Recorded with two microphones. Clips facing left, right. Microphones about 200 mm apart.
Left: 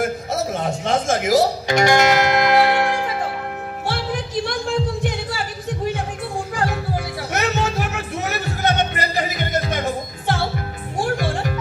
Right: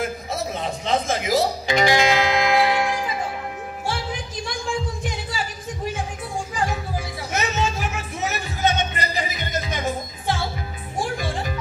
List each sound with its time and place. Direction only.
0.6 s music: 50° left (ahead or behind); by 5.5 s 65° left (ahead or behind)
6.5 s music: 65° left (ahead or behind)